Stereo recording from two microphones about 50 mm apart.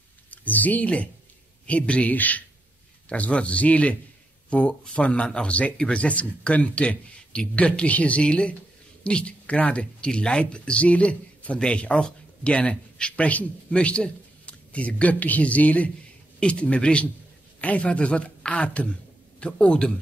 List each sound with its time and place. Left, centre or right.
0.3 s a man's voice: left